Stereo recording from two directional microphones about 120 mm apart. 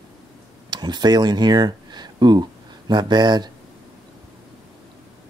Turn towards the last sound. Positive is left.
turn(degrees=-35)  # may be behind; listen again after turning